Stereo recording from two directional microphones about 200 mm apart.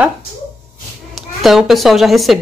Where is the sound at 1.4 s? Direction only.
Centre (ahead or behind).